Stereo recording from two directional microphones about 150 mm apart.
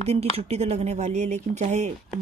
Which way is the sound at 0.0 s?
45° right (ahead or behind).